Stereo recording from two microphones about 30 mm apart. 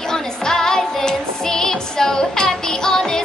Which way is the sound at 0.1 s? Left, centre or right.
Centre.